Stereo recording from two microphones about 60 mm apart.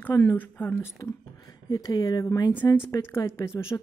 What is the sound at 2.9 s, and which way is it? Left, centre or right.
Speech, left.